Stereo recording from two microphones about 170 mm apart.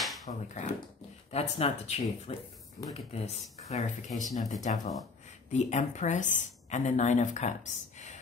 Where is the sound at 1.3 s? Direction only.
40° left (ahead or behind).